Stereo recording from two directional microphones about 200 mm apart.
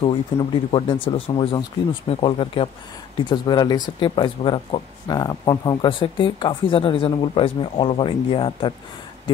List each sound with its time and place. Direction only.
0.0 s speech: 25° left (ahead or behind)